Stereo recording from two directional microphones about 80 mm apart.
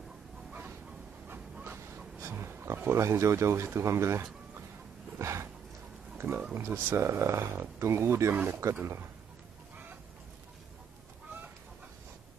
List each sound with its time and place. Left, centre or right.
0.5 s train: right
2.1 s speech: right
5.2 s a sound: right
6.5 s speech: right